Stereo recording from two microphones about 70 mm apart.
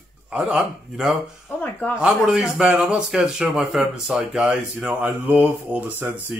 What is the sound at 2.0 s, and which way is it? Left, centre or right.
Speech, centre.